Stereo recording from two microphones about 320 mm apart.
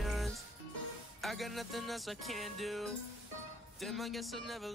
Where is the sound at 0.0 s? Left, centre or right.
Centre.